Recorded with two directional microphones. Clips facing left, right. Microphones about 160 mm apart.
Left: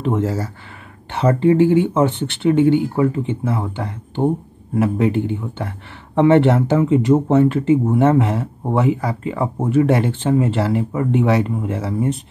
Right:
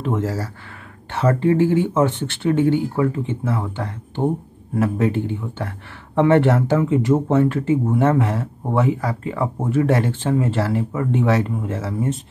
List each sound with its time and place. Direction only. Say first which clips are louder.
0.0 s speech: left 3 dB; 20° left (ahead or behind)